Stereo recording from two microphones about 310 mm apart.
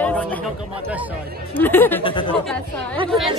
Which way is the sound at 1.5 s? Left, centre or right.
Centre.